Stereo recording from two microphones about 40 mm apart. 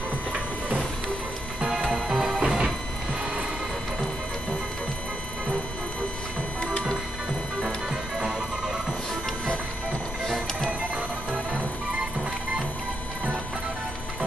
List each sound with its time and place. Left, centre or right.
1.6 s music: centre